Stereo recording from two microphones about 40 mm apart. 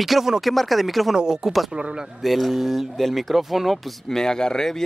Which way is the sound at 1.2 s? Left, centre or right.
Centre.